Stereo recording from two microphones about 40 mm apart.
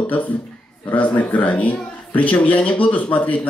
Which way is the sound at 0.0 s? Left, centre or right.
Left.